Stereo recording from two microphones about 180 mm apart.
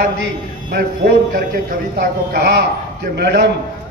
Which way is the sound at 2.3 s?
60° right (ahead or behind).